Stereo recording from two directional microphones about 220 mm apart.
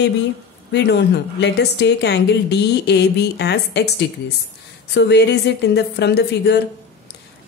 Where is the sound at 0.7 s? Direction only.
50° left (ahead or behind).